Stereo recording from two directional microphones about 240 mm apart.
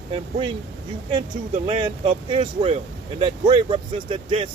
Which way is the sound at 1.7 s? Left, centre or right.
Right.